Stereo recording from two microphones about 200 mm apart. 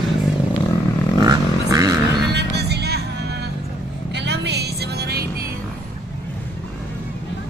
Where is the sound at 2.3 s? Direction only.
55° right (ahead or behind).